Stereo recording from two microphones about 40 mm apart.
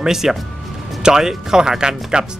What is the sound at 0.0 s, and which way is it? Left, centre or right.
Speech, centre.